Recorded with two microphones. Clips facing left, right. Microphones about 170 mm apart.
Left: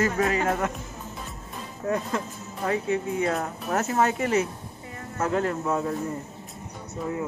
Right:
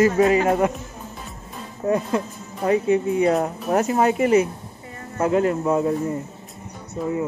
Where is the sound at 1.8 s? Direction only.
20° right (ahead or behind).